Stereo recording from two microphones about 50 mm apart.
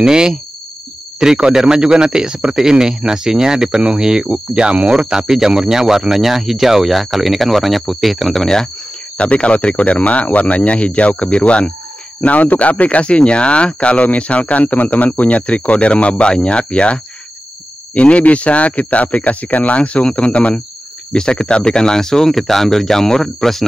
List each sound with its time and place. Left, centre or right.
0.0 s speech: centre
9.1 s speech: left; by 23.6 s centre